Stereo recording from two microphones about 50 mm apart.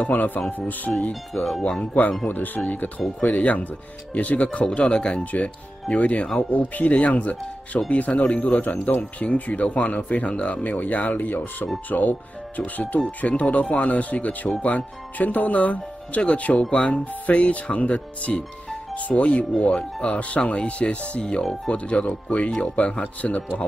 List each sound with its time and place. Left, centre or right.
0.0 s speech: left
1.3 s speech: centre
2.2 s speech: left
4.6 s speech: centre
5.2 s speech: left